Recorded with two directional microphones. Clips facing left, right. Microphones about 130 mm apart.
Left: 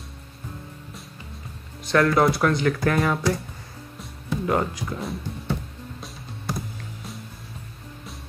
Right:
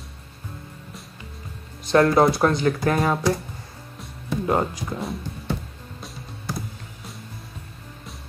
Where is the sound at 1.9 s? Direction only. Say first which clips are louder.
Right 2 dB; 30° right (ahead or behind).